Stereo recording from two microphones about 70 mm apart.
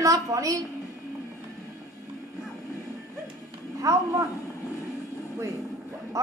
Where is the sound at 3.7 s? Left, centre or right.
Right.